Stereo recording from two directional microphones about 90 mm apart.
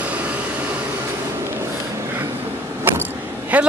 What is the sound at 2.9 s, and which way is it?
Vehicle, 25° right (ahead or behind).